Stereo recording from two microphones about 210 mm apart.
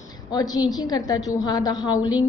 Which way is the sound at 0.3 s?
20° left (ahead or behind).